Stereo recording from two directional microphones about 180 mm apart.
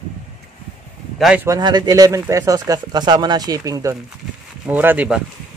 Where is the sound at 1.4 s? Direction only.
20° right (ahead or behind).